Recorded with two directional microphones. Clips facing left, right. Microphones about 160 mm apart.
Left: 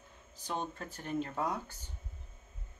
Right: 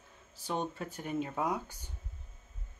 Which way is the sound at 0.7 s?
10° right (ahead or behind).